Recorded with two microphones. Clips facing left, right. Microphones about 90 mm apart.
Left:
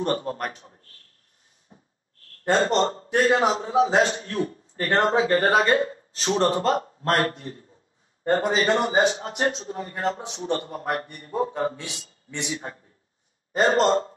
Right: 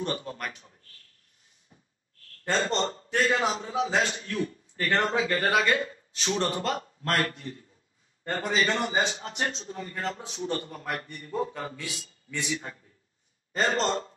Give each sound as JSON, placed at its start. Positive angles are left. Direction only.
{"t": 0.0, "sound": "a man's voice", "side_deg": 40}
{"t": 1.7, "sound": "a sound", "side_deg": 35}
{"t": 2.4, "sound": "a man's voice", "side_deg": 45}